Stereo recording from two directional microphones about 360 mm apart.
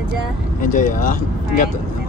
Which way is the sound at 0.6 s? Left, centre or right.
Left.